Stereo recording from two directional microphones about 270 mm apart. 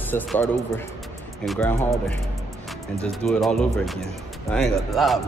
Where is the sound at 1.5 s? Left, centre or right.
Centre.